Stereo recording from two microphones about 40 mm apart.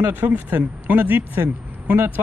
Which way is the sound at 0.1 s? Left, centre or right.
Right.